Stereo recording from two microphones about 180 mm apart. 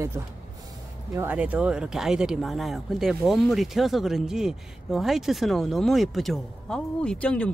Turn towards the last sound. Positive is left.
turn(degrees=5)  # may be behind; listen again after turning